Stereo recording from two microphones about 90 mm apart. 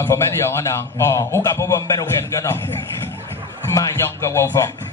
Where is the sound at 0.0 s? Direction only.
30° left (ahead or behind).